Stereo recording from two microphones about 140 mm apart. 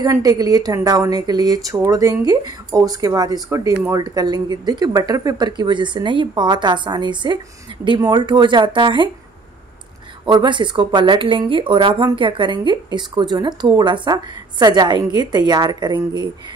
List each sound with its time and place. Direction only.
0.0 s speech: 25° right (ahead or behind)
10.2 s speech: 35° right (ahead or behind)